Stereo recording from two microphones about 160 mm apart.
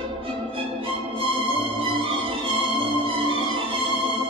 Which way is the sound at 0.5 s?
35° right (ahead or behind).